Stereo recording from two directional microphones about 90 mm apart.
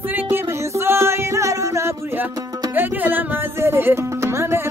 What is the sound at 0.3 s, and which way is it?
Music, 30° right (ahead or behind).